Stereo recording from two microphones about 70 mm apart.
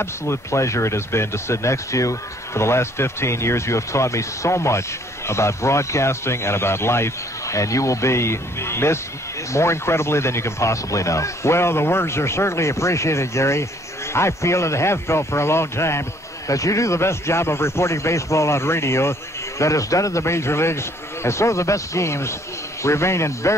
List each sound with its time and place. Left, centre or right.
0.0 s speech: left
19.6 s a man's voice: left